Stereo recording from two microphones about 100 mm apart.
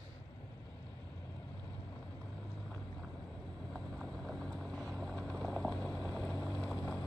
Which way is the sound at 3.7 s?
5° left (ahead or behind).